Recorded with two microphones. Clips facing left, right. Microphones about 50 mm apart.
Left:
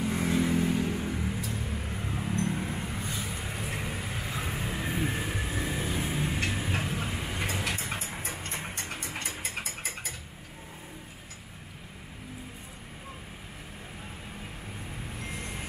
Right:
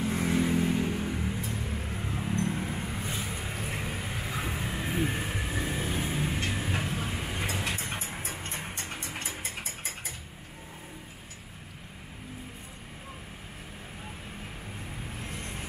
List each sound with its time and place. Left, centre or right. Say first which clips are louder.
0.0 s vehicle: even; centre
9.4 s engine: left 2 dB; left
15.0 s vehicle: left 2 dB; centre